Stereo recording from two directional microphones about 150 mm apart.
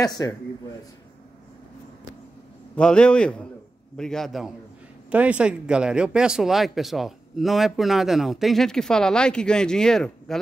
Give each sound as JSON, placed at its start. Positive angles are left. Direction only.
{"t": 0.0, "sound": "speech", "side_deg": 25}
{"t": 2.7, "sound": "a man's voice", "side_deg": 5}